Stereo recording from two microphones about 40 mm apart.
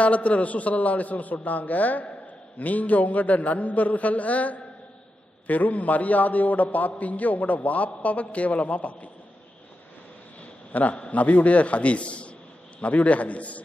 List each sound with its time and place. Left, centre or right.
0.0 s a man's voice: left
10.7 s a man's voice: left